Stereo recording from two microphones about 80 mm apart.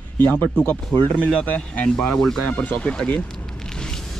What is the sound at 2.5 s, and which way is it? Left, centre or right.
Speech, left.